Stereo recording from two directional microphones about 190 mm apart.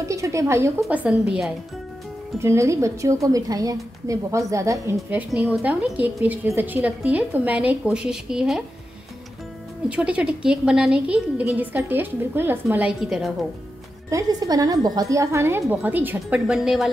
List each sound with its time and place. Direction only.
0.1 s a woman's voice: 15° right (ahead or behind)
2.3 s a woman's voice: 15° right (ahead or behind)
4.9 s a woman's voice: 5° right (ahead or behind)
9.8 s a woman's voice: 5° right (ahead or behind)
14.1 s a woman's voice: 20° right (ahead or behind); by 16.9 s centre (ahead or behind)